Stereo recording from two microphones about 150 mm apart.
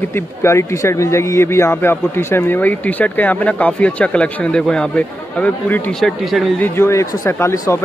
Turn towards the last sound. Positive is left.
turn(degrees=20)  # may be behind; listen again after turning